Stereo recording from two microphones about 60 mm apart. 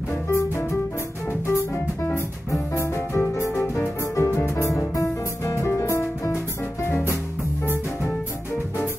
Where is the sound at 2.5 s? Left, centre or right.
Left.